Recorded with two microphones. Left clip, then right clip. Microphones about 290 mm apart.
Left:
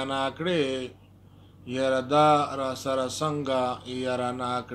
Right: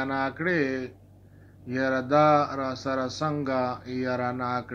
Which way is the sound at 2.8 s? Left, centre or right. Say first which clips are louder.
Left 1 dB; centre.